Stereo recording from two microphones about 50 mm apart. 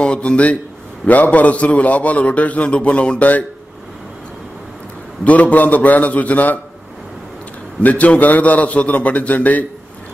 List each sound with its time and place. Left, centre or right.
0.0 s a man's voice: left
5.2 s a man's voice: left
7.8 s a man's voice: left